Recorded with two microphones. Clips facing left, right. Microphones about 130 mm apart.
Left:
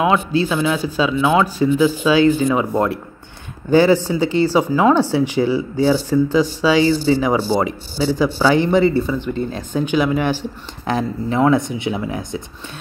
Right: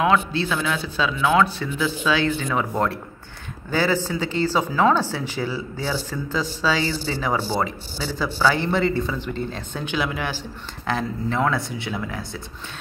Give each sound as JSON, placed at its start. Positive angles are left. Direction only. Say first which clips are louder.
{"t": 0.0, "sound": "speech", "louder": "left 3 dB", "side_deg": 15}